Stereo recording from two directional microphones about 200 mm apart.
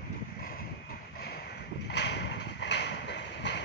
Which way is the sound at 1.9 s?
60° left (ahead or behind).